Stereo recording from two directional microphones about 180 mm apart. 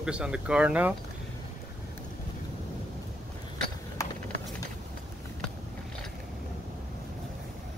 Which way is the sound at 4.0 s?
20° left (ahead or behind).